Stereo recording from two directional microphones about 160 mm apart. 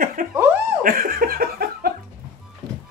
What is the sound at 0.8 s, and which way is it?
Laughter, 60° right (ahead or behind).